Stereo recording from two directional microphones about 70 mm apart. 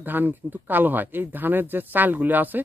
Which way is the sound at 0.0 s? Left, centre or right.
Right.